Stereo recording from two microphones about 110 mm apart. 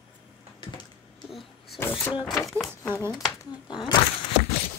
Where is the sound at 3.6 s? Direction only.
40° left (ahead or behind).